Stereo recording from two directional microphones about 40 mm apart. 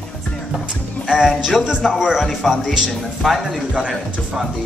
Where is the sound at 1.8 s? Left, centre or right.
Centre.